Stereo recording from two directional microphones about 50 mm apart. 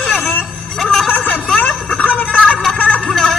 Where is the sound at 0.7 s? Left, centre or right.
Centre.